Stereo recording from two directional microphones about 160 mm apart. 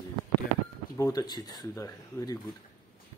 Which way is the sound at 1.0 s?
20° left (ahead or behind).